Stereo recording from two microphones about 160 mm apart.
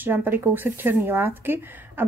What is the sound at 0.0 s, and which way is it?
Speech, 10° right (ahead or behind).